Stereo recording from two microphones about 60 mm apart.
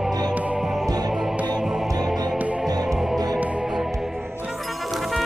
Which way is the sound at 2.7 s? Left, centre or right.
Right.